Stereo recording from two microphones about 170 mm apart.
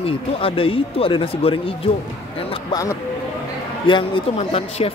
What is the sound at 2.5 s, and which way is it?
A man's voice, 20° left (ahead or behind).